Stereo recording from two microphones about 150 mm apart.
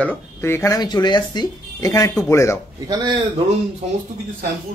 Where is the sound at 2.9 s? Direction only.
25° right (ahead or behind).